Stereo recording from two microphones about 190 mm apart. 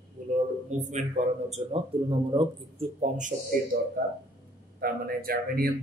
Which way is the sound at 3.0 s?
40° right (ahead or behind).